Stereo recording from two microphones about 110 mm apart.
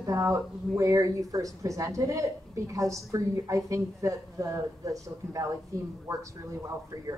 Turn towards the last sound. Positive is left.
turn(degrees=-30)  # may be behind; listen again after turning